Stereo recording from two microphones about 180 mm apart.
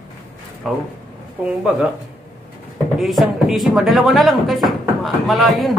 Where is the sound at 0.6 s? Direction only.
Centre (ahead or behind).